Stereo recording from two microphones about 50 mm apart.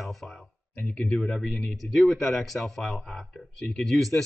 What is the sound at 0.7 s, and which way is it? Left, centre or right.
Speech, left.